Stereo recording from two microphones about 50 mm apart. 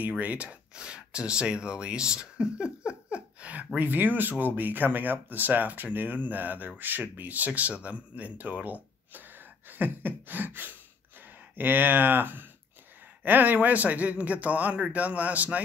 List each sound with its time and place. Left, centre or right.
0.2 s speech: right
9.7 s beatboxing: right
11.5 s speech: right